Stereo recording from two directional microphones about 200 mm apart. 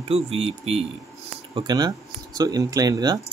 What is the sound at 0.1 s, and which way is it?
Speech, 30° right (ahead or behind).